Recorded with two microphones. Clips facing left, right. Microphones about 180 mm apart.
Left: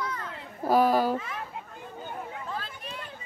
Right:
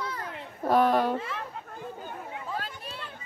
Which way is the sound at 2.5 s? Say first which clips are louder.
Right 1 dB; 40° right (ahead or behind).